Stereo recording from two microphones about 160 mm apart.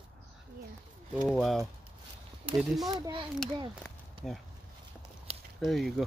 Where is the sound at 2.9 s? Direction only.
25° right (ahead or behind).